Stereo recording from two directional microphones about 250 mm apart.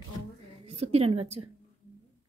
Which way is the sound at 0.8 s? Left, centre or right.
Right.